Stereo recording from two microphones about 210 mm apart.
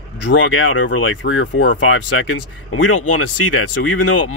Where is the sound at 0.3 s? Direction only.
70° left (ahead or behind).